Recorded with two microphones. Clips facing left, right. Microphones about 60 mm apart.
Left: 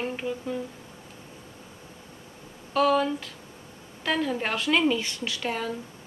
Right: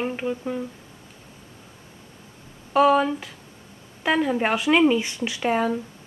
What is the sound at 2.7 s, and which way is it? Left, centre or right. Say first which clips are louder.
A woman's voice: right 5 dB; centre.